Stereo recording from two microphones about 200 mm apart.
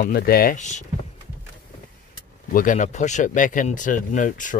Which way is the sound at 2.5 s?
40° left (ahead or behind).